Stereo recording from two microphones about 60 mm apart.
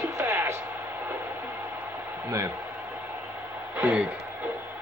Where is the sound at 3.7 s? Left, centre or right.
Right.